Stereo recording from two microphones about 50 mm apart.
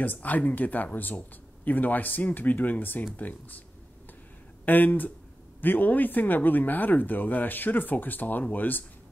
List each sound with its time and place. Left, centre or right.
0.0 s speech: left
4.6 s speech: left